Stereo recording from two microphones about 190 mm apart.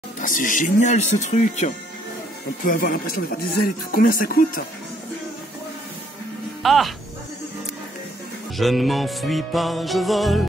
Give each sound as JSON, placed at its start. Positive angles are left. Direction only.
{"t": 0.2, "sound": "speech", "side_deg": 45}
{"t": 6.6, "sound": "speech", "side_deg": 0}
{"t": 8.5, "sound": "music", "side_deg": 0}